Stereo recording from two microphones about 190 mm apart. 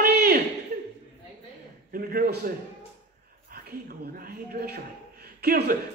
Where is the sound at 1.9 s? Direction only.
50° right (ahead or behind).